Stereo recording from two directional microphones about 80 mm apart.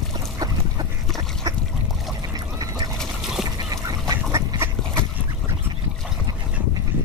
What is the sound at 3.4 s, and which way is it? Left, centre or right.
Duck, right.